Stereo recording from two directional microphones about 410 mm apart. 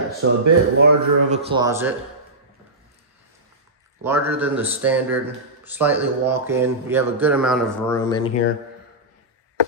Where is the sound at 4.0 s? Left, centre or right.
Centre.